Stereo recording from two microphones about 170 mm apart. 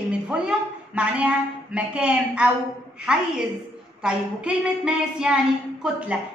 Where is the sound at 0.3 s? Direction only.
5° right (ahead or behind).